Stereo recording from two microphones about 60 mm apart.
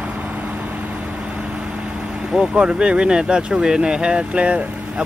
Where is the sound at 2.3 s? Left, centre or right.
Centre.